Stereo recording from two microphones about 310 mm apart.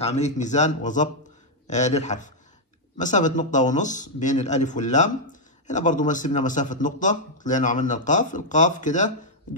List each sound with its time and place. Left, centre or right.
0.0 s speech: left